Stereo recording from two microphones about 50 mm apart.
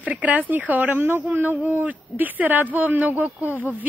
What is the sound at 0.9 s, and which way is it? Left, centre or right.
Speech, right.